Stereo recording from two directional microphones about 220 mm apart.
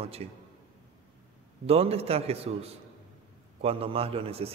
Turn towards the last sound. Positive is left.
turn(degrees=-25)  # may be behind; listen again after turning